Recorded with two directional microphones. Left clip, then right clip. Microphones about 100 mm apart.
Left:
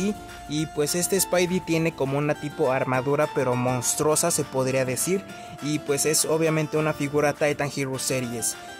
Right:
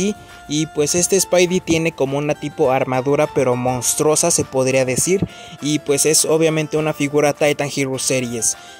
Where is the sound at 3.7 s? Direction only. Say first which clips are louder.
Right 6 dB; 30° right (ahead or behind).